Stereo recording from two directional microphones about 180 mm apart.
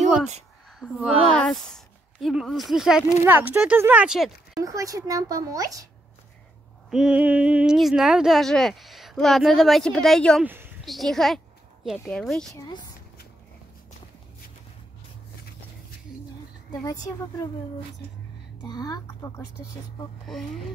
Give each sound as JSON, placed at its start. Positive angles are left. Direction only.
{"t": 0.7, "sound": "speech", "side_deg": -5}
{"t": 4.6, "sound": "speech", "side_deg": -20}
{"t": 6.9, "sound": "speech", "side_deg": -5}
{"t": 10.4, "sound": "speech", "side_deg": -10}
{"t": 10.9, "sound": "a woman's voice", "side_deg": 0}
{"t": 12.5, "sound": "speech", "side_deg": 25}
{"t": 16.8, "sound": "speech", "side_deg": 20}
{"t": 18.7, "sound": "speech", "side_deg": 20}